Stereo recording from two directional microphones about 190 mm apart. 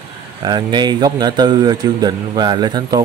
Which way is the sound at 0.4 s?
25° right (ahead or behind).